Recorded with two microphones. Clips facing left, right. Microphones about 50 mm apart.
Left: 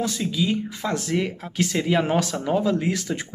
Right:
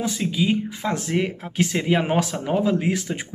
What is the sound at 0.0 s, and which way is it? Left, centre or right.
Speech, centre.